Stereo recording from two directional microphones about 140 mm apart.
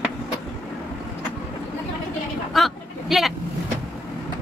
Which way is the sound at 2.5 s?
Centre (ahead or behind).